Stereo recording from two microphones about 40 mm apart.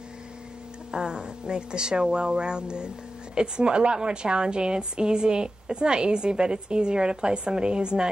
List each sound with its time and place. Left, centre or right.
0.9 s a woman's voice: centre